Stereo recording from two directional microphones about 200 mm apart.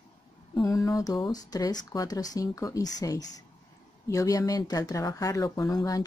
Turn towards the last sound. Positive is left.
turn(degrees=15)  # may be behind; listen again after turning